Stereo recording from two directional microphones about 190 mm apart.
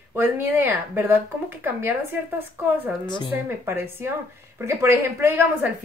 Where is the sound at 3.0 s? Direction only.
25° left (ahead or behind).